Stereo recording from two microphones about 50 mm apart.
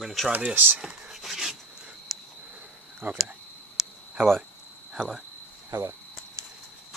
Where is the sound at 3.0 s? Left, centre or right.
Right.